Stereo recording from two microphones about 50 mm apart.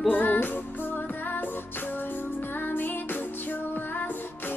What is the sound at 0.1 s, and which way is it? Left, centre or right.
Music, left.